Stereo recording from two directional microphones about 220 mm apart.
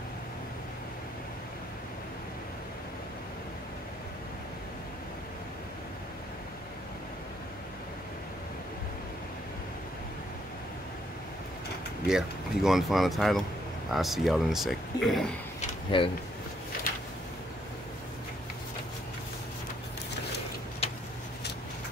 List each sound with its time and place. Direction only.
12.1 s speech: centre (ahead or behind)
15.9 s speech: 20° left (ahead or behind)
20.8 s vehicle: 25° left (ahead or behind)